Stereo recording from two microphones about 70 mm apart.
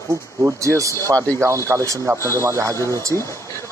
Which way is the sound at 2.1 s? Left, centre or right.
Left.